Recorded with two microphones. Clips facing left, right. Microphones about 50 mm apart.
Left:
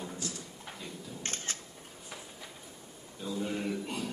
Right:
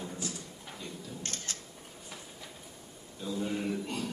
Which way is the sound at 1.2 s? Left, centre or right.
Left.